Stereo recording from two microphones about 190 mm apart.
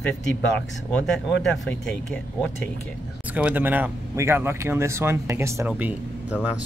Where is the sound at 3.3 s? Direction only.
5° right (ahead or behind).